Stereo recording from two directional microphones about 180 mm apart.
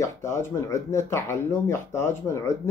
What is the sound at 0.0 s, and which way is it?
Speech, 15° left (ahead or behind).